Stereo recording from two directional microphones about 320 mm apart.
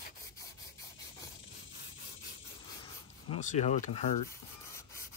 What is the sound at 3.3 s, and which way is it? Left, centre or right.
Speech, left.